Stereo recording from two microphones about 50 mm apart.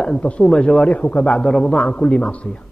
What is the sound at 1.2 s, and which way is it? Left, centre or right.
A man's voice, centre.